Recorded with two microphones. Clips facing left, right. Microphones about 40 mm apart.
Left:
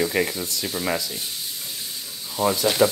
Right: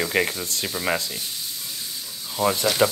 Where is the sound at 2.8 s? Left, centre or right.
Right.